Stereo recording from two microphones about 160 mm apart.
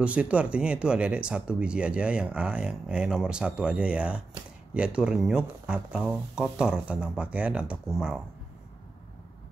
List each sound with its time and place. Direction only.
0.0 s speech: 10° right (ahead or behind)